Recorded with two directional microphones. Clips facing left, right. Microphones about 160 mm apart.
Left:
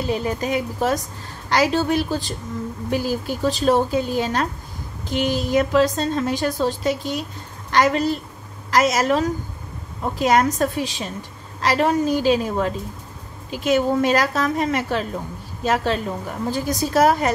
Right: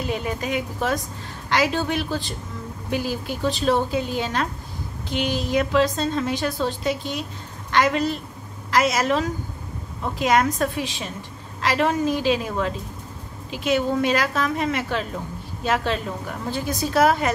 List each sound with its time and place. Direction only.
0.1 s a woman's voice: 35° left (ahead or behind)